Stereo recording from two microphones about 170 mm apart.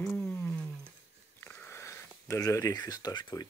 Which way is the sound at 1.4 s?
10° left (ahead or behind).